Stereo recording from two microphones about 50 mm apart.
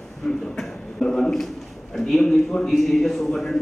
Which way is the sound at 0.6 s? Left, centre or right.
Centre.